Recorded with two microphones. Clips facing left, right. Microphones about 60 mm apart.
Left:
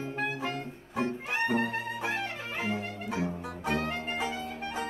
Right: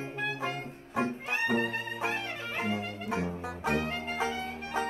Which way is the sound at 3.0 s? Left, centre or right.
Right.